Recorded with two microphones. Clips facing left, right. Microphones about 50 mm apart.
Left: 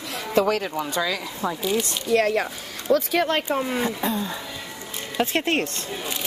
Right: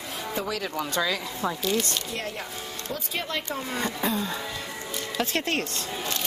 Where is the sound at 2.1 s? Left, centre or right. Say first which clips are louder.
Left 12 dB; left.